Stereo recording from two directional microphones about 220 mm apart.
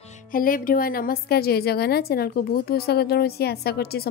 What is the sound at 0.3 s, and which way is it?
A woman's voice, 40° left (ahead or behind).